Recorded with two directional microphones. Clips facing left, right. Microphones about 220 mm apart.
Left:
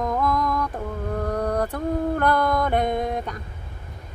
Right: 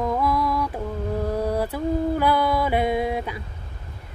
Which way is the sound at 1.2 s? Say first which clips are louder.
Even; 5° right (ahead or behind).